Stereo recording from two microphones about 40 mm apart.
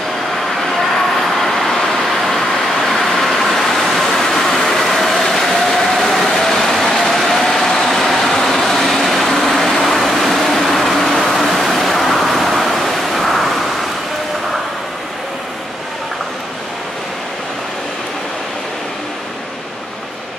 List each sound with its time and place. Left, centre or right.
1.2 s vehicle: centre